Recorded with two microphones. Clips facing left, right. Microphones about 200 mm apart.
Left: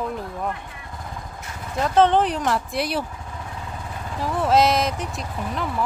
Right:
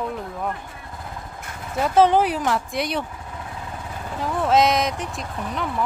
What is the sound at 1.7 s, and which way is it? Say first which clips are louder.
Speech: right 1 dB; 10° right (ahead or behind).